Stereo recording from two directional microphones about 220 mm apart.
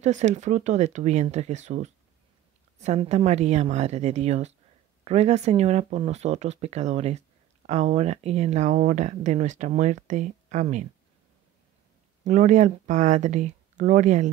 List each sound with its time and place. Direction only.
0.0 s a woman's voice: 30° right (ahead or behind)
12.3 s speech: 35° right (ahead or behind)